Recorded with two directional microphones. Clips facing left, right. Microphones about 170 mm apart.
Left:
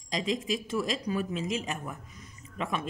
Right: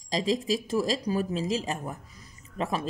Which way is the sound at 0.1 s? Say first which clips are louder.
Right 4 dB; 35° right (ahead or behind).